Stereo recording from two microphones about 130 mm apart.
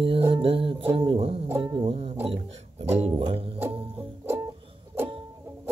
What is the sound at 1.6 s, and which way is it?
Music, 35° right (ahead or behind).